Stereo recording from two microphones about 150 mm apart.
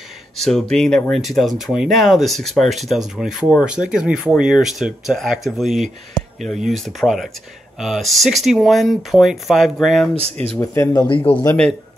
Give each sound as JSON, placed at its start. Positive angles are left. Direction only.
{"t": 0.4, "sound": "speech", "side_deg": 5}
{"t": 10.1, "sound": "speech", "side_deg": -40}
{"t": 10.6, "sound": "speech", "side_deg": 20}